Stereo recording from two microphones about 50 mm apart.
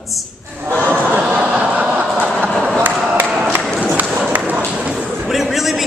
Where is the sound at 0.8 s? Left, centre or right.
Right.